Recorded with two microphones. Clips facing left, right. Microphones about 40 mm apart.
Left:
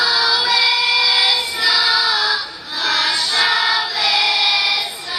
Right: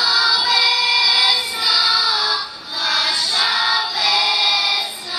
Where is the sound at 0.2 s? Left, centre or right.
Left.